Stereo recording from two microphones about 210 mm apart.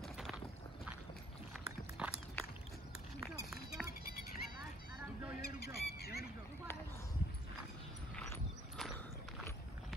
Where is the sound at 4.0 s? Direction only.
45° left (ahead or behind).